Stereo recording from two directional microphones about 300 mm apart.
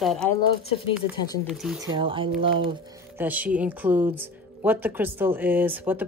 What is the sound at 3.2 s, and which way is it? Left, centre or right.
Speech, centre.